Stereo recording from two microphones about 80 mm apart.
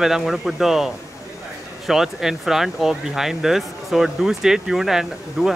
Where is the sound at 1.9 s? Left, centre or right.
Centre.